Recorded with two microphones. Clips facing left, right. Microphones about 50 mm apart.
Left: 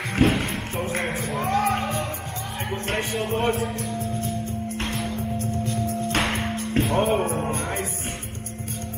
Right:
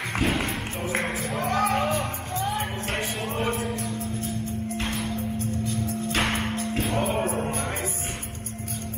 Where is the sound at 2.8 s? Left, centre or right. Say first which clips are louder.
Left 3 dB; left.